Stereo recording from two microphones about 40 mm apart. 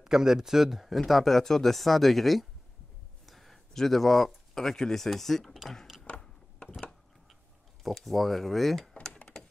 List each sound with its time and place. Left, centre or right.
0.0 s speech: centre
6.0 s a sound: left
7.9 s speech: centre